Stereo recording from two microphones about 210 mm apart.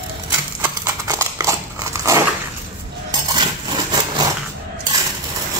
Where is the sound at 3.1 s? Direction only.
20° right (ahead or behind).